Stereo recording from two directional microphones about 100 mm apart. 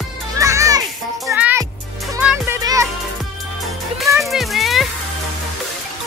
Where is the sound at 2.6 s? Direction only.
35° right (ahead or behind).